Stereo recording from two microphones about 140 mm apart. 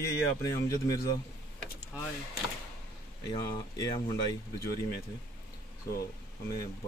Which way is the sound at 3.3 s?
25° left (ahead or behind).